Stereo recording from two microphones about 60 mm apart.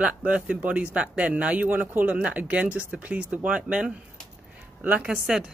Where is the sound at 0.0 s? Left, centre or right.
Centre.